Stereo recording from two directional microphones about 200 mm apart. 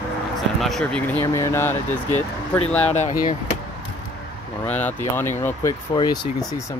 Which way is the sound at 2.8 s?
35° left (ahead or behind).